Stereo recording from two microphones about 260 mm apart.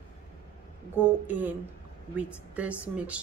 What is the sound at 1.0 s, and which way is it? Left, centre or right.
A woman's voice, centre.